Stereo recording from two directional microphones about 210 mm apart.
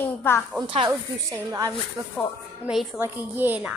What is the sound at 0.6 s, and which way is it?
A woman's voice, 25° right (ahead or behind).